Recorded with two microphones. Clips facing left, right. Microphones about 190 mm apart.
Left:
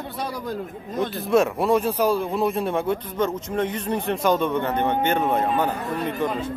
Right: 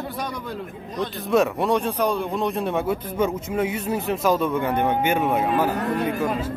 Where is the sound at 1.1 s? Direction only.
Centre (ahead or behind).